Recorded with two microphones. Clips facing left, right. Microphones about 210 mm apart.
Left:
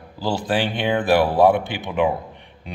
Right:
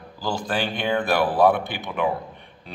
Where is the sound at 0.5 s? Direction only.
20° left (ahead or behind).